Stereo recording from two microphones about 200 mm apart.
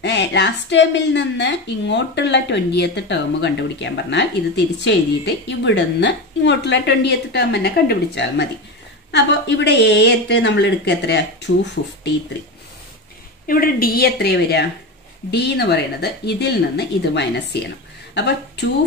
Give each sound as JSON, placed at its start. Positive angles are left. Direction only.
{"t": 0.0, "sound": "a woman's voice", "side_deg": 60}
{"t": 13.5, "sound": "a woman's voice", "side_deg": 45}